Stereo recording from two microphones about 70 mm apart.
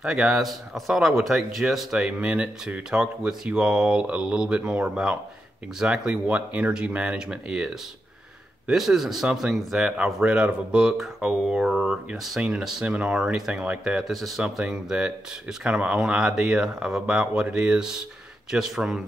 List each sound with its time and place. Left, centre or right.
0.0 s speech: centre
10.2 s speech: centre